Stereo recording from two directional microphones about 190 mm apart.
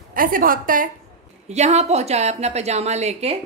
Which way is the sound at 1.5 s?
35° right (ahead or behind).